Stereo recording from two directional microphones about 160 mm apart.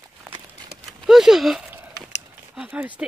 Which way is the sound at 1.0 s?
Centre (ahead or behind).